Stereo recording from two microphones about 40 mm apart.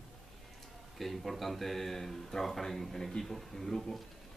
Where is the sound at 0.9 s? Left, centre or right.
Centre.